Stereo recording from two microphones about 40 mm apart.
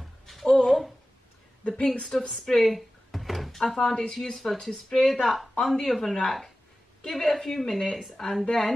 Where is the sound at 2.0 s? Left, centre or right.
Centre.